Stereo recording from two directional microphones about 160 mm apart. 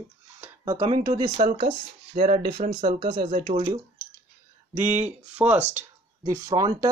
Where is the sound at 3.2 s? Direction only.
45° right (ahead or behind).